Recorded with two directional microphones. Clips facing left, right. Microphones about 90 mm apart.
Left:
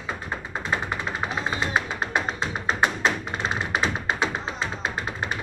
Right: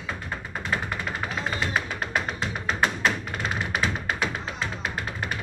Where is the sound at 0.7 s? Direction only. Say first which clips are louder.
Left 2 dB; 20° left (ahead or behind).